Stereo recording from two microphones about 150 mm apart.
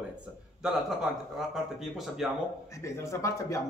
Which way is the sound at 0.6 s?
5° right (ahead or behind).